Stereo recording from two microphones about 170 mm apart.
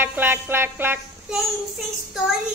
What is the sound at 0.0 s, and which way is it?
Music, 10° right (ahead or behind).